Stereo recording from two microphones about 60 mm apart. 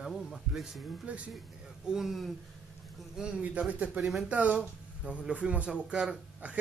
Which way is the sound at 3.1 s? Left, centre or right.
Centre.